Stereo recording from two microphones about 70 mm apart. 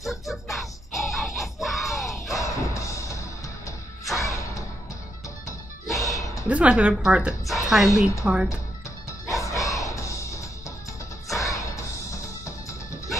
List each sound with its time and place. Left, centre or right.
0.3 s music: centre
2.3 s music: left
5.9 s music: left
6.5 s a woman's voice: centre
9.3 s music: left